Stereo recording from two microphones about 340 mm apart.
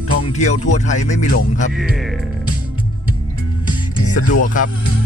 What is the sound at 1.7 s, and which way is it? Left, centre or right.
Music, centre.